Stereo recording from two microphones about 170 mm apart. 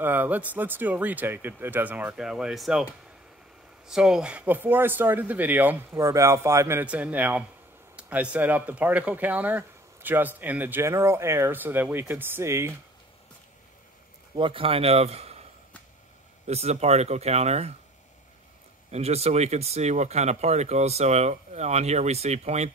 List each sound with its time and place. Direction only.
0.0 s speech: 10° right (ahead or behind)
14.3 s a man's voice: 30° right (ahead or behind)
16.4 s speech: 40° right (ahead or behind)
18.9 s speech: 40° right (ahead or behind)